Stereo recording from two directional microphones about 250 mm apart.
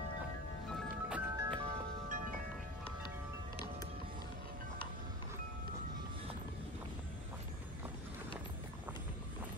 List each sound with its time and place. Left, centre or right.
1.0 s music: centre
1.6 s wind chime: right